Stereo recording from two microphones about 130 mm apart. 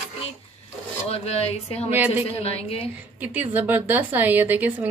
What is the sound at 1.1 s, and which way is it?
Speech, 50° left (ahead or behind).